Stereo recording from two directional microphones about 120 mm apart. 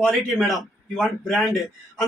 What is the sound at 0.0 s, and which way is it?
A man's voice, centre (ahead or behind).